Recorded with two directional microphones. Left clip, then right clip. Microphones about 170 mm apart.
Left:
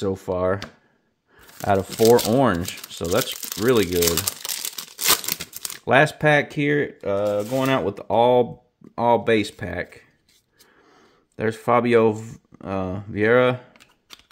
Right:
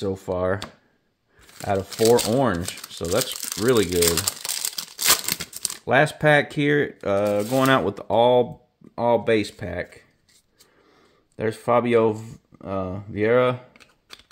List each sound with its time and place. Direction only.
0.0 s speech: 15° left (ahead or behind)
1.6 s speech: 20° left (ahead or behind)
3.6 s crumpling: 10° left (ahead or behind)
5.9 s speech: 15° left (ahead or behind); by 7.1 s 5° right (ahead or behind)
7.1 s speech: 15° right (ahead or behind); by 10.0 s 15° left (ahead or behind)
11.3 s speech: 20° left (ahead or behind)